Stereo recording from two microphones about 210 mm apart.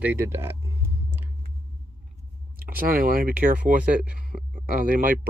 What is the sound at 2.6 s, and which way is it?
Speech, 45° right (ahead or behind).